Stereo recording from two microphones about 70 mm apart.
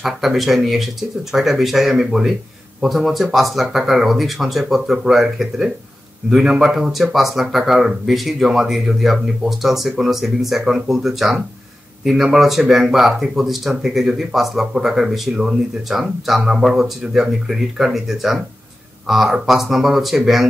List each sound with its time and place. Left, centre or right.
0.0 s speech: centre